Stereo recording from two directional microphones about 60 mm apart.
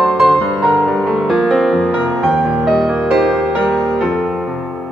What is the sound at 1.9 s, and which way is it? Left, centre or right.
Music, centre.